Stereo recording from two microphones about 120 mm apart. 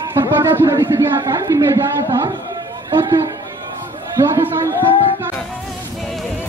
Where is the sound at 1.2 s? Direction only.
30° right (ahead or behind).